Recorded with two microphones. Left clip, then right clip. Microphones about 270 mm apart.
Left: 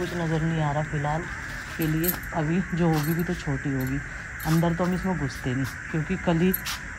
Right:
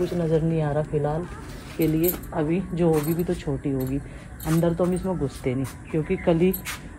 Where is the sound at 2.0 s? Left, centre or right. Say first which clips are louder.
Right 3 dB; centre.